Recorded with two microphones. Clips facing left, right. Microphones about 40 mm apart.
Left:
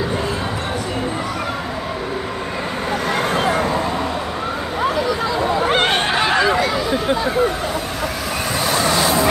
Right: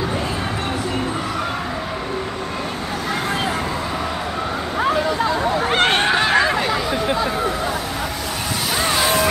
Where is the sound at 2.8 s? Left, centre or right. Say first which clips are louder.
Left 6 dB; left.